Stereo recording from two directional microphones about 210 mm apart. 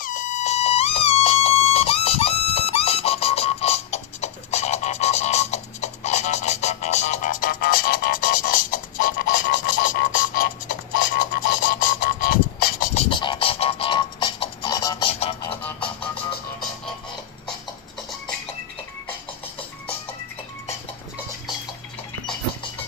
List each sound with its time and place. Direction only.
0.0 s music: 40° left (ahead or behind)
12.9 s beatboxing: 25° left (ahead or behind)